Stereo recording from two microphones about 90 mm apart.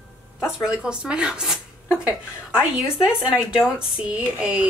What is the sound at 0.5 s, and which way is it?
Speech, 10° right (ahead or behind).